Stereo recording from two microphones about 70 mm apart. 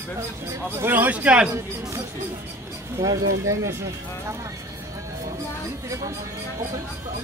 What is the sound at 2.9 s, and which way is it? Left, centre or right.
Speech, right.